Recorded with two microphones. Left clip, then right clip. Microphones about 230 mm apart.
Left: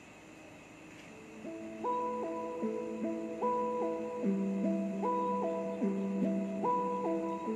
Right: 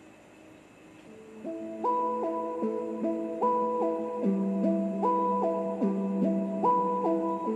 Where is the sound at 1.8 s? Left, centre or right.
Right.